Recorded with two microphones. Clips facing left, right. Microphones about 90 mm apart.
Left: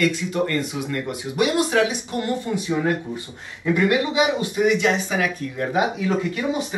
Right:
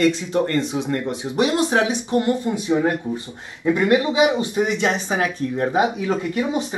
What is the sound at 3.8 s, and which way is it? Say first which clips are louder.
Speech: right 2 dB; 30° right (ahead or behind).